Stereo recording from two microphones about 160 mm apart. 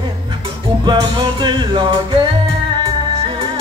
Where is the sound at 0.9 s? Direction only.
25° right (ahead or behind).